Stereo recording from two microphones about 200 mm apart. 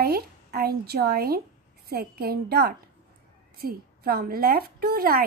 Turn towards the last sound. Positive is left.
turn(degrees=-50)  # may be behind; listen again after turning